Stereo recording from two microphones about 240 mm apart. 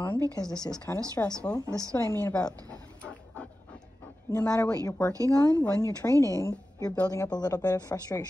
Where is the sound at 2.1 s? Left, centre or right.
Centre.